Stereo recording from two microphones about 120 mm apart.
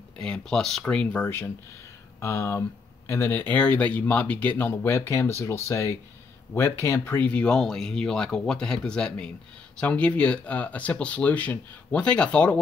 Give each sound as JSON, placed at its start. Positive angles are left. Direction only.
{"t": 0.2, "sound": "speech", "side_deg": 5}